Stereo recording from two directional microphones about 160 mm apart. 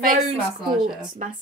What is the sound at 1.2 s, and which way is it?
Speech, 45° right (ahead or behind).